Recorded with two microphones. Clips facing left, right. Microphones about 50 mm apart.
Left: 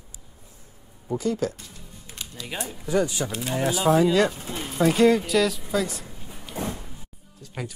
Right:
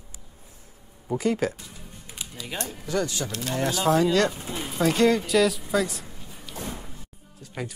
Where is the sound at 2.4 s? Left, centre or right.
Centre.